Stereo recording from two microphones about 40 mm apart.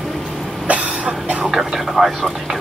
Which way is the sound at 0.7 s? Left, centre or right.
Right.